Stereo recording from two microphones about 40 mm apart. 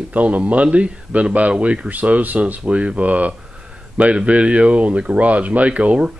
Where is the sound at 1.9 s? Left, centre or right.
Right.